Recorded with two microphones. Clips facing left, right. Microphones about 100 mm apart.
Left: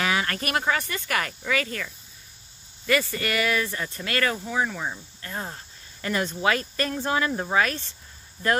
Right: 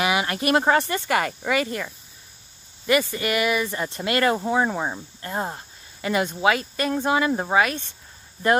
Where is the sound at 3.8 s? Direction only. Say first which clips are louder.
Right 5 dB; 25° right (ahead or behind).